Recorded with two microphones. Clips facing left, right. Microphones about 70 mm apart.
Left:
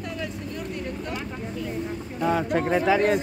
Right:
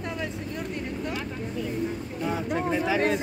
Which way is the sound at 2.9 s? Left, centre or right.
Left.